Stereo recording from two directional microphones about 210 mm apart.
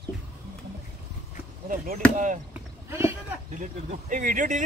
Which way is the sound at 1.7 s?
40° right (ahead or behind).